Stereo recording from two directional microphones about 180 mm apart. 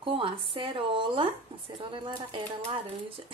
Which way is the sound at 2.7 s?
30° right (ahead or behind).